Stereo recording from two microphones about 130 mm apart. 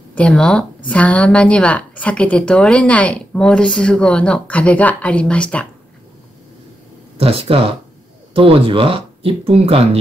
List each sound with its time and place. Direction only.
0.1 s speech: 10° left (ahead or behind)
7.2 s speech: 45° right (ahead or behind)